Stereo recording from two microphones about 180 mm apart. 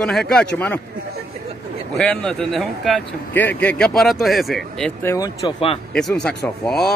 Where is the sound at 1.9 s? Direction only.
Centre (ahead or behind).